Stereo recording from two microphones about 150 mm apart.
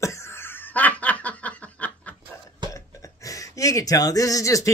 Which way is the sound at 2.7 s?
20° left (ahead or behind).